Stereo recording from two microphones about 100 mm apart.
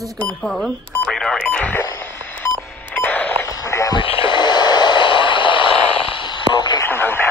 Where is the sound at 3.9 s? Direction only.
55° left (ahead or behind).